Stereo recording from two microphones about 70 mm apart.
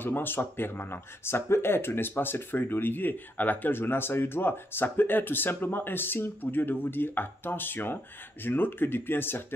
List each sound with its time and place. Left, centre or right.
0.0 s speech: left